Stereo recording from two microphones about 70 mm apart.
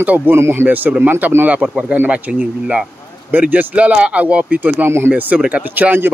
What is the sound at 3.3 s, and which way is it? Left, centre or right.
A man's voice, right.